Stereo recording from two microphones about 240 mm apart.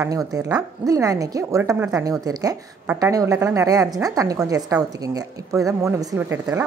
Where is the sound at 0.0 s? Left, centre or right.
Centre.